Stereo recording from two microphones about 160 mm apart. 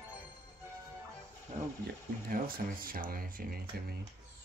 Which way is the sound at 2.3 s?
60° right (ahead or behind).